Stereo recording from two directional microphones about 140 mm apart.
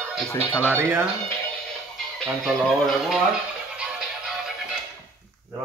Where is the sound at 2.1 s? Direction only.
Centre (ahead or behind).